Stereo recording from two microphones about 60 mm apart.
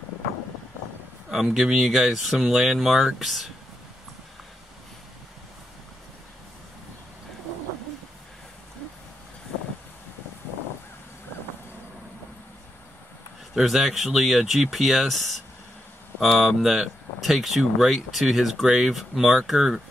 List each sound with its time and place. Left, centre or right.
1.3 s speech: centre
13.6 s speech: centre